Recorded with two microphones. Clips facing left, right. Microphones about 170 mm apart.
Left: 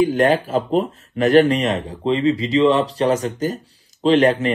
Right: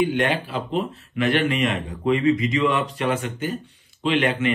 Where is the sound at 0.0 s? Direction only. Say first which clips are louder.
Left 6 dB; 40° left (ahead or behind).